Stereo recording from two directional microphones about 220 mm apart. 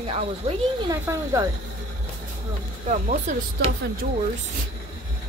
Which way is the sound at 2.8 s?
35° right (ahead or behind).